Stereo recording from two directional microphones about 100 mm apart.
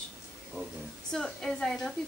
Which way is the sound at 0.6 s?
20° right (ahead or behind).